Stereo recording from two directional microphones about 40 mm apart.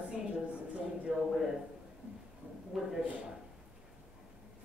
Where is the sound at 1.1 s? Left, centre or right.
Centre.